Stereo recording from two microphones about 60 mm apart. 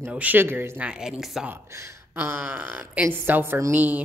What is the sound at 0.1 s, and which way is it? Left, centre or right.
Speech, right.